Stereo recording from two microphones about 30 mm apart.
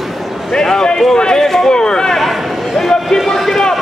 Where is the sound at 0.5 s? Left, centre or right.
Left.